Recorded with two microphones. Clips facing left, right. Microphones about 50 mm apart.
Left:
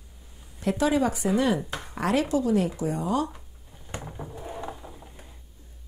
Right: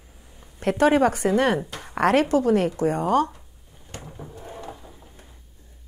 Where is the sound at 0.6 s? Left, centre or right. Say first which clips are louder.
Right 5 dB; right.